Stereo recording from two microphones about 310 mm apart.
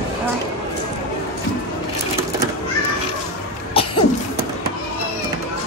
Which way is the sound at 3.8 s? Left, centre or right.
Centre.